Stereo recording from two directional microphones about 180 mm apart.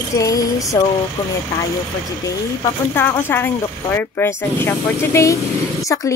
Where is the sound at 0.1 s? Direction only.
20° left (ahead or behind).